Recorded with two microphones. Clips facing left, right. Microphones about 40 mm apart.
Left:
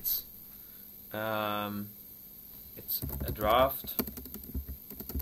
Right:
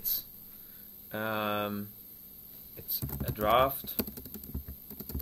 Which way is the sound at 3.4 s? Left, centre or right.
Centre.